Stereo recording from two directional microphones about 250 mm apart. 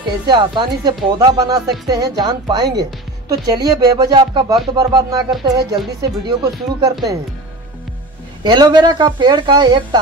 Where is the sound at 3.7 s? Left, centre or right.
Centre.